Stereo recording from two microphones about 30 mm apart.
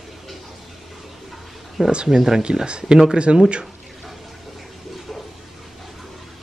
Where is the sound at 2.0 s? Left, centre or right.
Centre.